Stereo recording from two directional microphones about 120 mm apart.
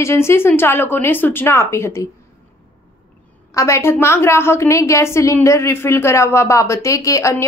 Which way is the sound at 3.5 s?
25° left (ahead or behind).